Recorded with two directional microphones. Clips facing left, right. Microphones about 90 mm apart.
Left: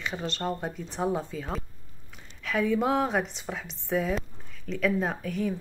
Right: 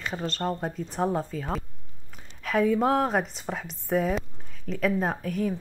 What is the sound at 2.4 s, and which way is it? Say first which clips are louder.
Speech: right 3 dB; 45° right (ahead or behind).